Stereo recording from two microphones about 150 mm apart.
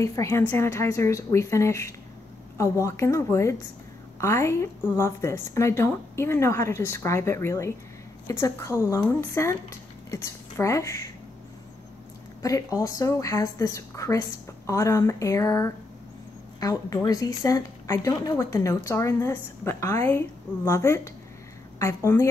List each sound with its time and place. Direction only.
0.0 s a woman's voice: 20° left (ahead or behind)
12.4 s a woman's voice: 20° left (ahead or behind)